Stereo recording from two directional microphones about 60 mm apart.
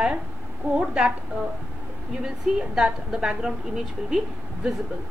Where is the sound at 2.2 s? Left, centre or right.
Centre.